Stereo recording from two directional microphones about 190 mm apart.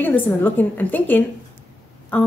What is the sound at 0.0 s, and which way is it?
A woman's voice, 10° left (ahead or behind).